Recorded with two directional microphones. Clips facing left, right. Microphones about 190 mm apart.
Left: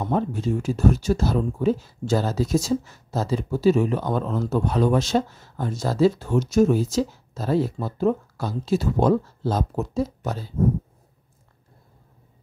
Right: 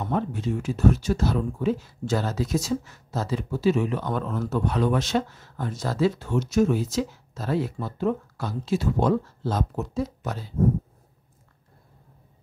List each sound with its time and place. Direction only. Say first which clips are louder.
0.0 s speech: left 3 dB; 35° left (ahead or behind)